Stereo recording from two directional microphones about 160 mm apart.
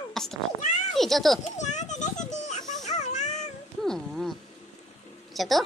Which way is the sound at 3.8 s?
5° left (ahead or behind).